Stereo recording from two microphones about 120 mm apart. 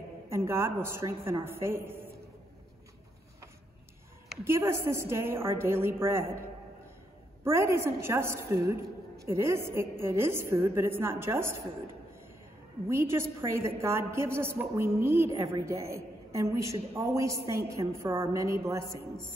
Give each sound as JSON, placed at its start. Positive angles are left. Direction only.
{"t": 0.3, "sound": "a woman's voice", "side_deg": -20}
{"t": 4.5, "sound": "a woman's voice", "side_deg": -25}
{"t": 7.4, "sound": "a woman's voice", "side_deg": -20}
{"t": 12.8, "sound": "a woman's voice", "side_deg": -20}